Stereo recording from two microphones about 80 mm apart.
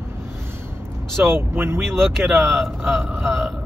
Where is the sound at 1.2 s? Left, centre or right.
Right.